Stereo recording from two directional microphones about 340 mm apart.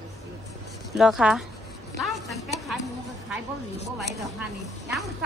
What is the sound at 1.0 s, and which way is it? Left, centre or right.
A woman's voice, centre.